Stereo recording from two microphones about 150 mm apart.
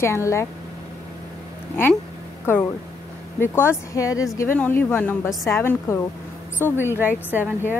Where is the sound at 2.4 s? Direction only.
15° left (ahead or behind).